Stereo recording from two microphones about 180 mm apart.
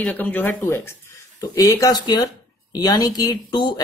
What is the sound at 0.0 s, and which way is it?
Speech, 10° left (ahead or behind).